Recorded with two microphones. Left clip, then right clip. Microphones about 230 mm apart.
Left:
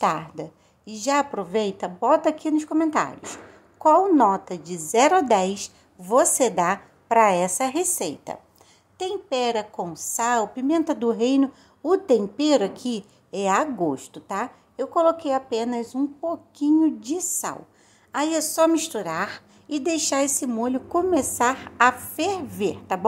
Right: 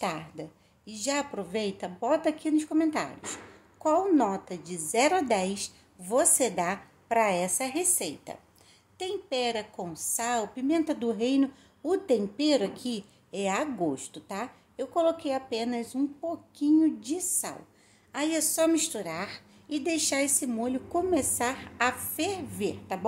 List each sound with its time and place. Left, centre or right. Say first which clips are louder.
0.0 s a woman's voice: left 10 dB; centre